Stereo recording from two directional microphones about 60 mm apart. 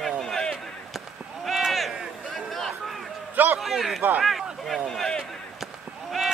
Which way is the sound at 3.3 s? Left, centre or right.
Right.